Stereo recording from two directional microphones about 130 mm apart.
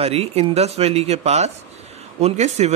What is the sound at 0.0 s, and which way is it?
A man's voice, 50° right (ahead or behind).